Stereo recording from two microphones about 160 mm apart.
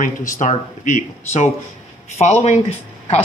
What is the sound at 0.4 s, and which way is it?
Speech, 55° left (ahead or behind).